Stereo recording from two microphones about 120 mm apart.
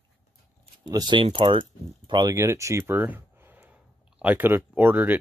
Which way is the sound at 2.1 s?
35° right (ahead or behind).